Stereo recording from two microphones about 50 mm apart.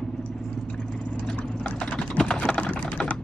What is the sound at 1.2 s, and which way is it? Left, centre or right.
Typing, left.